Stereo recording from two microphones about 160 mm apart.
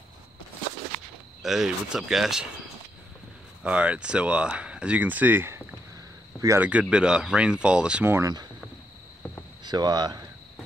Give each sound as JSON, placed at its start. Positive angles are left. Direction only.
{"t": 1.4, "sound": "speech", "side_deg": 0}
{"t": 3.6, "sound": "speech", "side_deg": -10}
{"t": 6.7, "sound": "speech", "side_deg": -5}
{"t": 9.7, "sound": "speech", "side_deg": -25}